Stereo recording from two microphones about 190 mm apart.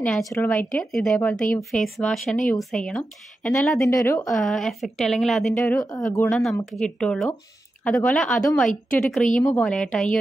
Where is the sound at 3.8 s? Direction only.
15° left (ahead or behind).